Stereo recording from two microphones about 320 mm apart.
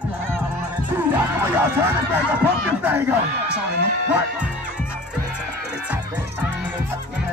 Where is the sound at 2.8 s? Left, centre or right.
Centre.